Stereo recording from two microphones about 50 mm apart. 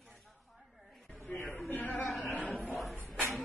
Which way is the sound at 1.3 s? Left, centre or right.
Left.